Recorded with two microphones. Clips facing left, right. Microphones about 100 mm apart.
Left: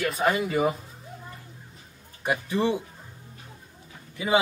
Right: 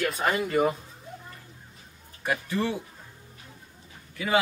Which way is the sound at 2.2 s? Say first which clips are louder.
Left 3 dB; 20° left (ahead or behind).